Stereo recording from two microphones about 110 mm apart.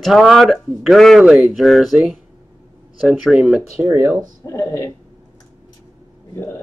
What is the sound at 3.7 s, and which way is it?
Speech, 15° right (ahead or behind).